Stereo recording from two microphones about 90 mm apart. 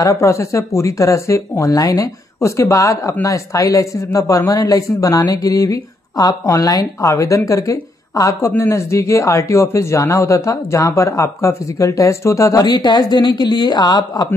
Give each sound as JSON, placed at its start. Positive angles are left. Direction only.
{"t": 0.0, "sound": "speech", "side_deg": 35}
{"t": 12.6, "sound": "speech", "side_deg": 50}